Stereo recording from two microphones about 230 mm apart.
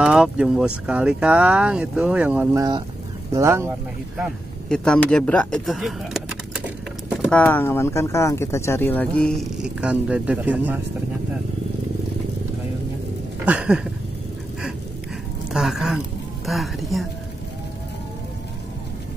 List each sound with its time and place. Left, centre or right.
0.0 s speech: centre
4.2 s speech: centre
13.5 s a sound: centre
15.5 s speech: centre